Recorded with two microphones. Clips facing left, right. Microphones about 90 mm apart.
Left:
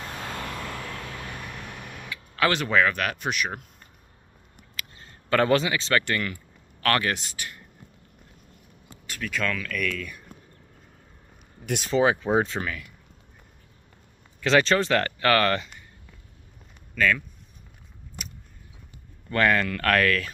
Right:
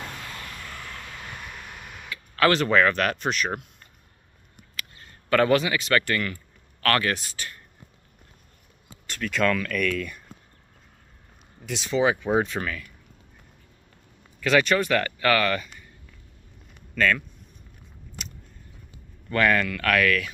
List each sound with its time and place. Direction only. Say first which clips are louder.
0.3 s vehicle: left 6 dB; 90° left
2.0 s speech: right 3 dB; 15° left (ahead or behind)
4.9 s a man's voice: right 1 dB; 25° left (ahead or behind)
9.0 s speech: right 5 dB; 5° left (ahead or behind)
11.6 s speech: left 4 dB; 50° left (ahead or behind)
11.9 s speech: even; 30° left (ahead or behind)
14.4 s speech: even; 25° left (ahead or behind)
16.9 s speech: right 1 dB; 5° left (ahead or behind)
19.3 s speech: even; 30° left (ahead or behind)